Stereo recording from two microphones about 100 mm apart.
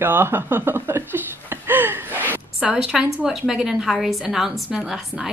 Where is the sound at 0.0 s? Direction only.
20° right (ahead or behind).